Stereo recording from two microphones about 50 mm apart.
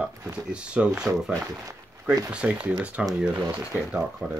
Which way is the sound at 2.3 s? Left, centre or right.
Right.